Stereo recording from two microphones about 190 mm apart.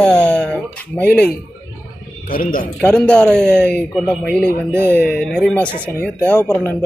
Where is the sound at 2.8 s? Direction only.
5° left (ahead or behind).